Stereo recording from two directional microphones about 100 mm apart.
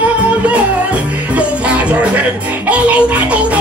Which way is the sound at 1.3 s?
10° right (ahead or behind).